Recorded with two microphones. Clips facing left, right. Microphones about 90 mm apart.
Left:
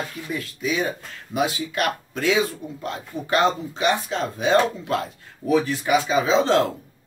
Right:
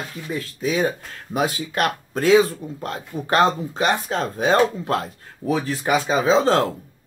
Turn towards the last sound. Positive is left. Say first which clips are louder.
# right 1 dB
turn(degrees=-40)  # may be behind; listen again after turning